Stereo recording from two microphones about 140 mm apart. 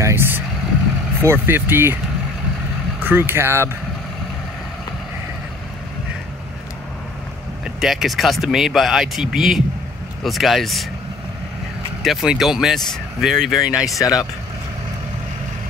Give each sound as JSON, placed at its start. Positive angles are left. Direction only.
{"t": 0.0, "sound": "vehicle", "side_deg": -15}
{"t": 1.2, "sound": "speech", "side_deg": -15}
{"t": 3.0, "sound": "speech", "side_deg": -15}
{"t": 7.6, "sound": "speech", "side_deg": -5}
{"t": 12.0, "sound": "speech", "side_deg": 0}
{"t": 13.9, "sound": "speech", "side_deg": 25}